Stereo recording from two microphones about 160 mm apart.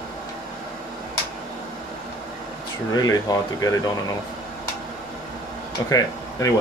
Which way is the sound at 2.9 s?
25° left (ahead or behind).